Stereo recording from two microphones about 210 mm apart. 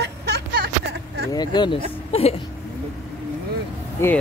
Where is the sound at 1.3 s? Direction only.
20° left (ahead or behind).